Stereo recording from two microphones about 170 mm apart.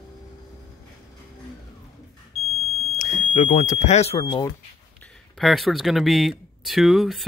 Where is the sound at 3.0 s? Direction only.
45° left (ahead or behind).